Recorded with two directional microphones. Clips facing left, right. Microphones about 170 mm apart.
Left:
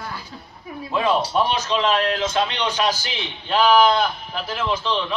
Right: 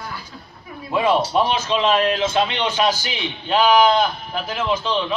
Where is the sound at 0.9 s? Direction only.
10° right (ahead or behind).